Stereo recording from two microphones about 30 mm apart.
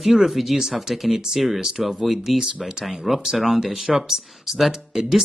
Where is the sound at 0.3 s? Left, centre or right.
Centre.